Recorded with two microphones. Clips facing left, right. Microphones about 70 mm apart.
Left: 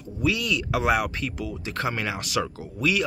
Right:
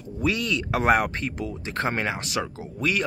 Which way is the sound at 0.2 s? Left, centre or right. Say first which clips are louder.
Even; right.